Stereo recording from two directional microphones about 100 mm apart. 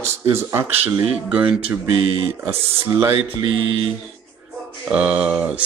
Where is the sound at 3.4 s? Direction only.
55° right (ahead or behind).